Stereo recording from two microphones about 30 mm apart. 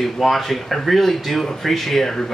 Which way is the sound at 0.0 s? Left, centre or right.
Centre.